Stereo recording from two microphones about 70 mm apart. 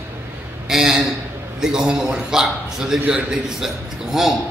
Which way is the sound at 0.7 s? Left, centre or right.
Centre.